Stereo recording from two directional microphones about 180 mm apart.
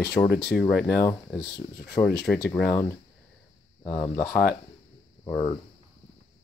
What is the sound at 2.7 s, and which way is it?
Speech, 15° left (ahead or behind).